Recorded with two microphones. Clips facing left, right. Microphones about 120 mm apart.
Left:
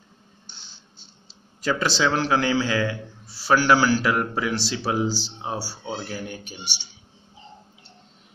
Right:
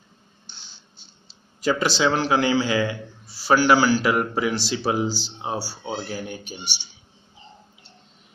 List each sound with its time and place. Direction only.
1.6 s a man's voice: 10° right (ahead or behind)